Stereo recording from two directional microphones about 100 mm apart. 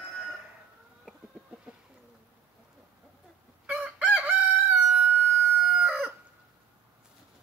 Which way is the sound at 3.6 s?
10° right (ahead or behind).